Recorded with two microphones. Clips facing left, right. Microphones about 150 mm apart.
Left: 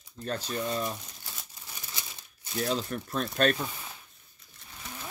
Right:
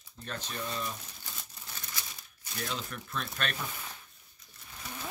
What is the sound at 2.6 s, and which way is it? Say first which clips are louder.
Speech: left 8 dB; 35° left (ahead or behind).